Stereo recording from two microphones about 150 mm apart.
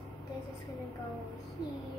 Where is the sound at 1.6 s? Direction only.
30° left (ahead or behind).